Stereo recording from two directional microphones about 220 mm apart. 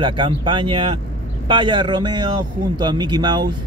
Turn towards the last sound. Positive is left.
turn(degrees=-20)  # may be behind; listen again after turning